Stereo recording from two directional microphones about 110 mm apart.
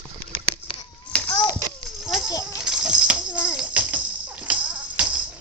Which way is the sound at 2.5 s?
5° right (ahead or behind).